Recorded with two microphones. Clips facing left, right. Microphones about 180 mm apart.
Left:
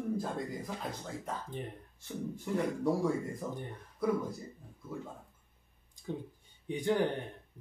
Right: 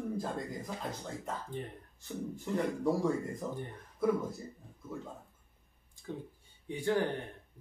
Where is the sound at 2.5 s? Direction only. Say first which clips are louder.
Even; centre (ahead or behind).